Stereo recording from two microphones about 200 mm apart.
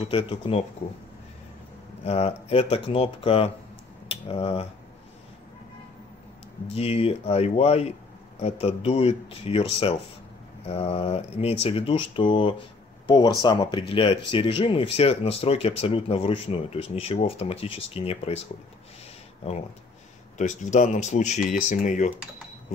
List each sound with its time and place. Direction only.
0.0 s speech: 30° left (ahead or behind)
2.0 s speech: 30° left (ahead or behind)
4.1 s cutlery: 30° left (ahead or behind)
6.7 s speech: 30° left (ahead or behind)
20.3 s speech: 35° left (ahead or behind)